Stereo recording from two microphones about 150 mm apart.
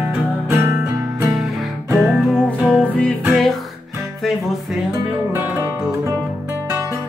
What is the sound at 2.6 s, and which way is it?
Music, 10° left (ahead or behind).